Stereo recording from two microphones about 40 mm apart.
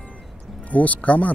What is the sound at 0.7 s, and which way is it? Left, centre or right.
Speech, left.